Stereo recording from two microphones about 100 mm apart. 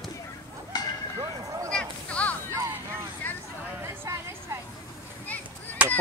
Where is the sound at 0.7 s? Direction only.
40° left (ahead or behind).